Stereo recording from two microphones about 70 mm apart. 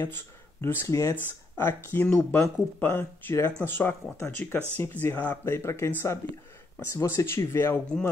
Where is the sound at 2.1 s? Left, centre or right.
Centre.